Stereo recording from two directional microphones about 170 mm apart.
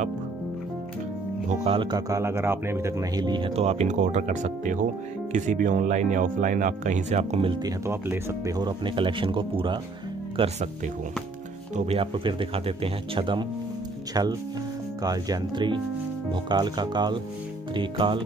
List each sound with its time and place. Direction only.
1.6 s speech: 30° right (ahead or behind)
11.7 s speech: 40° right (ahead or behind)